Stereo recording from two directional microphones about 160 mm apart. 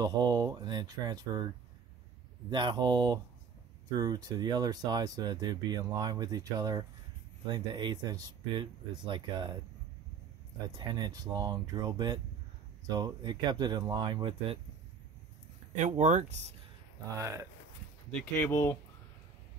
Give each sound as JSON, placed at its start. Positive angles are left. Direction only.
{"t": 0.0, "sound": "speech", "side_deg": -25}
{"t": 2.5, "sound": "speech", "side_deg": -25}
{"t": 10.7, "sound": "speech", "side_deg": -25}
{"t": 15.7, "sound": "speech", "side_deg": -50}
{"t": 17.1, "sound": "speech", "side_deg": -15}
{"t": 18.3, "sound": "speech", "side_deg": 15}